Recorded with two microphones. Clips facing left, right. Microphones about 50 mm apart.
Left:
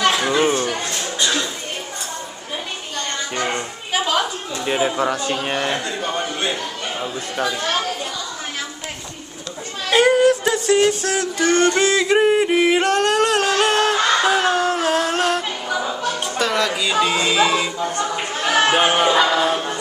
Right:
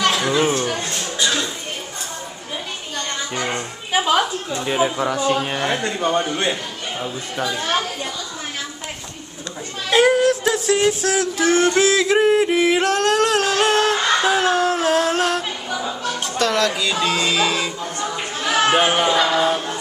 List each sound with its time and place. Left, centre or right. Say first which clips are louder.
0.0 s a sound: left 1 dB; centre
3.9 s music: right 2 dB; centre
4.6 s music: left 1 dB; centre
5.1 s speech: right 4 dB; centre
5.4 s music: left 1 dB; centre
7.0 s speech: left 1 dB; centre
9.8 s music: left 1 dB; centre
15.9 s speech: left 2 dB; centre
18.8 s music: left 1 dB; centre